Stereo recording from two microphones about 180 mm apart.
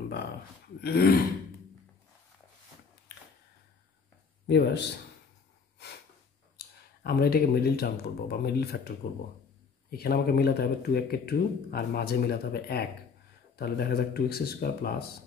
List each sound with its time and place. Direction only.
0.7 s speech: 60° left (ahead or behind)
4.5 s speech: 70° left (ahead or behind)
6.5 s speech: 60° left (ahead or behind)